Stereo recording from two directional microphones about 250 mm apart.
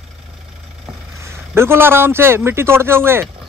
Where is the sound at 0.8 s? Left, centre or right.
Centre.